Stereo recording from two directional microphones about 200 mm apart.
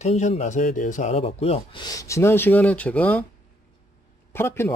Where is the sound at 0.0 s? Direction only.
35° left (ahead or behind); by 3.3 s 5° left (ahead or behind).